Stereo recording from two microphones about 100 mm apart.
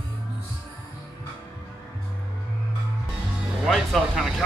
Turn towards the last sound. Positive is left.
turn(degrees=-5)  # may be behind; listen again after turning